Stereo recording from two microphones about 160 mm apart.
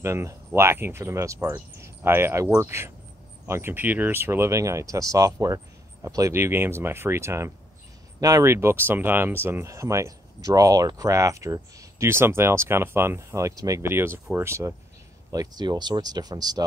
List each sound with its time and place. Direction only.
0.0 s speech: 15° right (ahead or behind)